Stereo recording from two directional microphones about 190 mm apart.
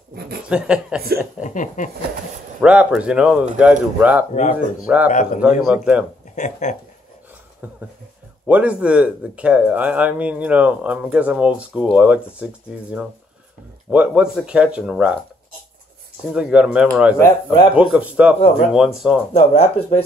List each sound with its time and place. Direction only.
0.1 s chuckle: 55° right (ahead or behind)
0.5 s speech: 5° right (ahead or behind)
1.4 s speech: 40° left (ahead or behind)
2.6 s speech: 5° right (ahead or behind)
4.3 s speech: 40° left (ahead or behind)
4.8 s speech: 5° right (ahead or behind)
5.1 s speech: 40° left (ahead or behind)
5.7 s speech: 5° right (ahead or behind)
6.3 s speech: 40° left (ahead or behind)
7.6 s speech: 10° right (ahead or behind)
16.3 s speech: 5° right (ahead or behind)
17.2 s speech: 15° left (ahead or behind)
17.7 s speech: 5° right (ahead or behind)
19.3 s speech: 35° left (ahead or behind)